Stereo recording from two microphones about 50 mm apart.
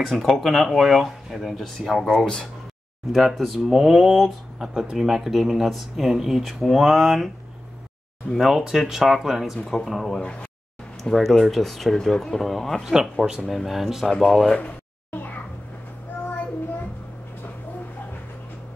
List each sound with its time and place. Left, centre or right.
0.0 s speech: centre
3.1 s speech: centre
8.4 s speech: centre
9.7 s speech: centre
15.0 s a sound: left